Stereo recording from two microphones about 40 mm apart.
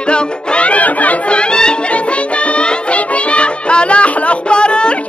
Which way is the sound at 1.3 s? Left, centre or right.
Left.